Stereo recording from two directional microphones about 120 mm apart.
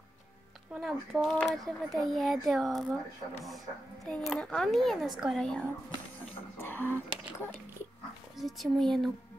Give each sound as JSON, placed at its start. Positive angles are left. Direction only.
{"t": 0.7, "sound": "speech", "side_deg": 0}
{"t": 6.6, "sound": "speech", "side_deg": 15}
{"t": 8.4, "sound": "speech", "side_deg": 0}